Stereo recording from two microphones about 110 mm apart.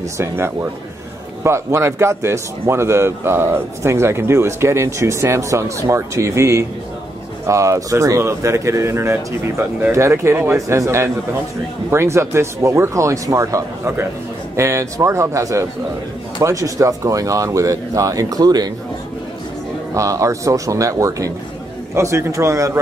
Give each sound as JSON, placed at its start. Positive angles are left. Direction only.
{"t": 0.2, "sound": "a man's voice", "side_deg": -25}
{"t": 19.9, "sound": "a man's voice", "side_deg": -30}